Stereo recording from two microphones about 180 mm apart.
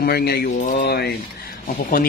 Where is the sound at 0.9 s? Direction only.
60° left (ahead or behind).